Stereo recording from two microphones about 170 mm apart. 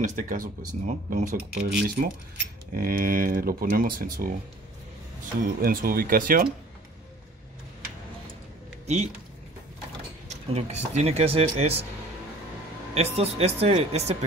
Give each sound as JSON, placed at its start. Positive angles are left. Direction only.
{"t": 0.0, "sound": "speech", "side_deg": -50}
{"t": 5.6, "sound": "speech", "side_deg": -60}
{"t": 8.8, "sound": "speech", "side_deg": -40}
{"t": 10.2, "sound": "speech", "side_deg": -40}
{"t": 12.9, "sound": "speech", "side_deg": -40}